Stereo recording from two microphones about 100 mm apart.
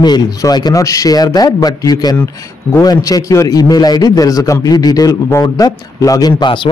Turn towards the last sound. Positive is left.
turn(degrees=50)  # may be behind; listen again after turning